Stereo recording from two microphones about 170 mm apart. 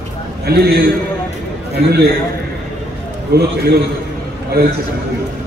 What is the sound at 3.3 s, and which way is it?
A man's voice, 70° right (ahead or behind).